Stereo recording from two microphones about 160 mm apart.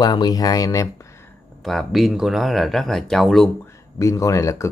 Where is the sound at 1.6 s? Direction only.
Centre (ahead or behind).